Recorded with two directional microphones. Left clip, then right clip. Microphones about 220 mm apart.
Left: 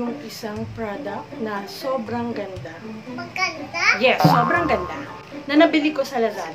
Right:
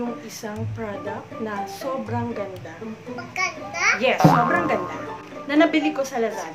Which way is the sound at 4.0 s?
5° left (ahead or behind).